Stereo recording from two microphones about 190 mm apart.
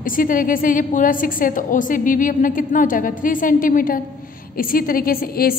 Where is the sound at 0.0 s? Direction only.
45° left (ahead or behind).